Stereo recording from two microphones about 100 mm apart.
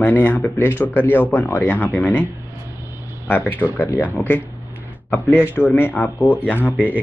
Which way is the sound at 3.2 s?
20° left (ahead or behind).